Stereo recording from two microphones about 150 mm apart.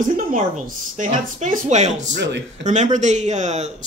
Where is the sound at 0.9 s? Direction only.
55° right (ahead or behind).